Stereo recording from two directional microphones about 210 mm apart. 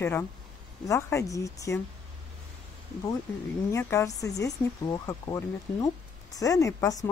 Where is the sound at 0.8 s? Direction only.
15° left (ahead or behind).